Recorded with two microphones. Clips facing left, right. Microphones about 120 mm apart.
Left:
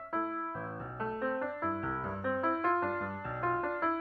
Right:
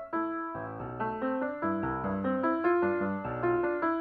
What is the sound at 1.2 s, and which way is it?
Music, 15° right (ahead or behind).